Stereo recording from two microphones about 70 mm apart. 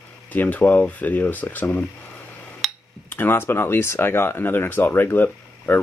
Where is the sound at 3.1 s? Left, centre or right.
Left.